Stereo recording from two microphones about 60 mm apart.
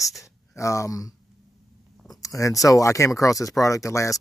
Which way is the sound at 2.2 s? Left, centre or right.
Left.